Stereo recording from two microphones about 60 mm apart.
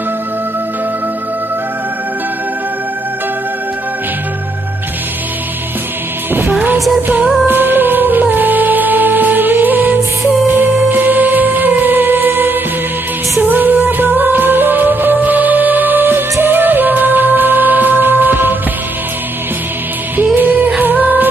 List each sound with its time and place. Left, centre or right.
7.0 s music: right
20.2 s music: right